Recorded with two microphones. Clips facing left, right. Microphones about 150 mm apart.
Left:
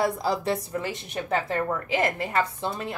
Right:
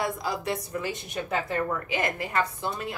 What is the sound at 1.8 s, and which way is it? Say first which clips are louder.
Speech: left 4 dB; 30° left (ahead or behind).